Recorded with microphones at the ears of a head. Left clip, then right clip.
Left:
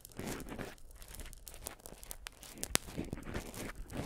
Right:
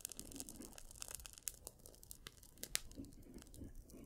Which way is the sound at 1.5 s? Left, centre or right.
Left.